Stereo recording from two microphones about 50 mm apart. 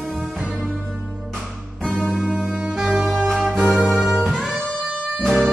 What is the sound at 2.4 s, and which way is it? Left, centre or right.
Music, centre.